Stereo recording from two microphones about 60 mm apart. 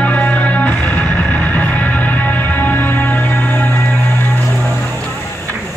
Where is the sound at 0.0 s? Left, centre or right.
Left.